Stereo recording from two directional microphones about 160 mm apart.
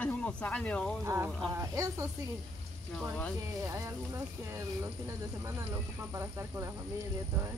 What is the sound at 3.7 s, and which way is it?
Speech, 20° right (ahead or behind).